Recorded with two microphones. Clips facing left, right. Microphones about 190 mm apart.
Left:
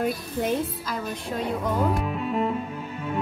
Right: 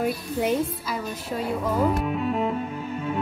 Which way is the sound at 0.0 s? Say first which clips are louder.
Right 1 dB; 10° right (ahead or behind).